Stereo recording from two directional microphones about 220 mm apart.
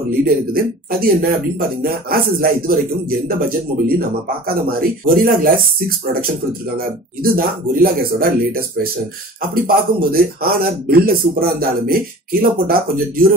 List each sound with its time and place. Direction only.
0.2 s a man's voice: 40° right (ahead or behind)
7.3 s a man's voice: 40° right (ahead or behind)